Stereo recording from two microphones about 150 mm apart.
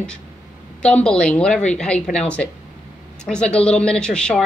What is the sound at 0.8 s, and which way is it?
A woman's voice, 5° left (ahead or behind).